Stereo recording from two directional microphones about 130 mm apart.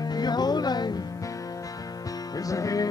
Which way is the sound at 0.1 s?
30° left (ahead or behind).